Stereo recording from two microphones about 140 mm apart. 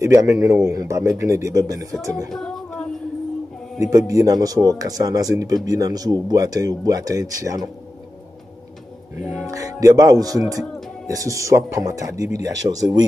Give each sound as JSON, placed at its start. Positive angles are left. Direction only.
{"t": 0.0, "sound": "speech", "side_deg": -25}
{"t": 2.3, "sound": "female singing", "side_deg": 5}
{"t": 3.9, "sound": "speech", "side_deg": -25}
{"t": 9.1, "sound": "music", "side_deg": -15}
{"t": 9.6, "sound": "speech", "side_deg": -25}